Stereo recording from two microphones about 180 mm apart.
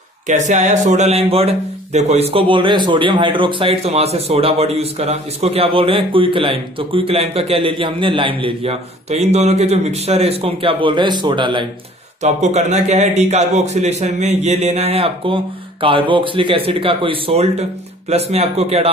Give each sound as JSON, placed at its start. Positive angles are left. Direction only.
{"t": 0.3, "sound": "speech", "side_deg": -40}
{"t": 12.2, "sound": "speech", "side_deg": -40}